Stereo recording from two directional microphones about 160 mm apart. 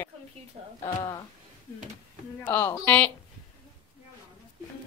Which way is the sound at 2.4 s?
15° left (ahead or behind).